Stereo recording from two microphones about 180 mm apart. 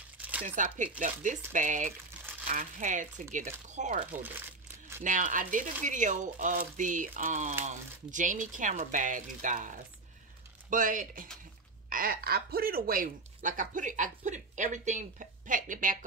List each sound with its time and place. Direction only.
0.2 s crumpling: 10° right (ahead or behind)
0.9 s speech: 45° right (ahead or behind)
5.0 s speech: 45° right (ahead or behind)